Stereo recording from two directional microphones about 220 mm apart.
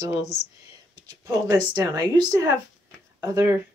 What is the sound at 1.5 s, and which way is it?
Speech, 15° right (ahead or behind).